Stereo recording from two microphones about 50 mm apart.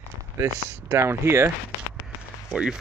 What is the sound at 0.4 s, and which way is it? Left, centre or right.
Speech, right.